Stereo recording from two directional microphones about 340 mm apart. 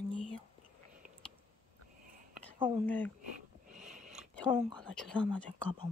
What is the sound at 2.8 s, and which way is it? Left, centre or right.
Speech, centre.